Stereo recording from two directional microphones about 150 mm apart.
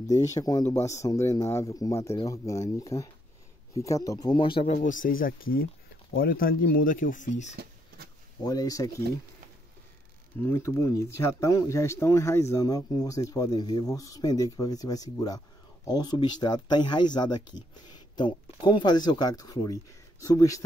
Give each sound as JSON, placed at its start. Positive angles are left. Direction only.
{"t": 0.0, "sound": "speech", "side_deg": 20}
{"t": 4.7, "sound": "speech", "side_deg": 60}
{"t": 8.5, "sound": "speech", "side_deg": 25}
{"t": 10.4, "sound": "speech", "side_deg": 15}